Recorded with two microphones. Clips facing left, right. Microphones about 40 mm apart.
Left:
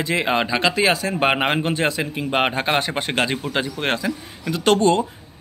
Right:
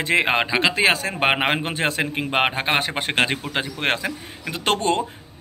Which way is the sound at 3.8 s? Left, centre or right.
Right.